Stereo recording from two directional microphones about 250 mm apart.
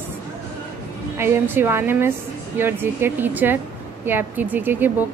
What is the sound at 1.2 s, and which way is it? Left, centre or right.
A woman's voice, centre.